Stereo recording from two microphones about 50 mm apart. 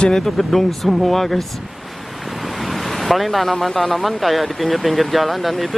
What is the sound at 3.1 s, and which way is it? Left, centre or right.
Speech, centre.